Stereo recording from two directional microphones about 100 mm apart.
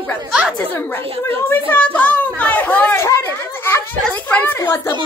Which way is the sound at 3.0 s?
25° left (ahead or behind).